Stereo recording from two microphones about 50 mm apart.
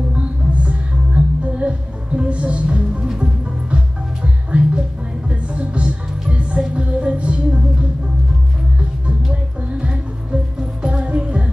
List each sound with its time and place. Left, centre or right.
0.1 s music: right
9.0 s music: right